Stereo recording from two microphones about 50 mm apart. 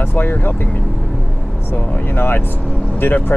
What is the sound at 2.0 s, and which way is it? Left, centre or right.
Speech, left.